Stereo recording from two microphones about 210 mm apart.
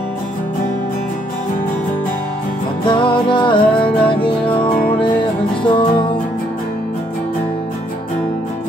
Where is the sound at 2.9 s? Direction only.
25° left (ahead or behind).